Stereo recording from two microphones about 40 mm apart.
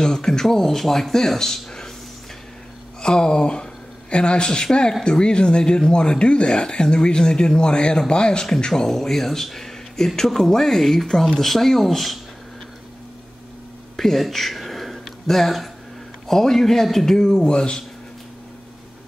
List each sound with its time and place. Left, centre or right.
0.0 s speech: centre
3.0 s speech: centre
13.9 s a sound: centre
16.3 s speech: centre
17.5 s speech: left